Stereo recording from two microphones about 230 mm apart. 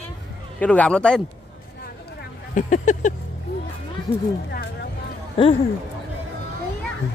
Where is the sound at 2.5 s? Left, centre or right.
Left.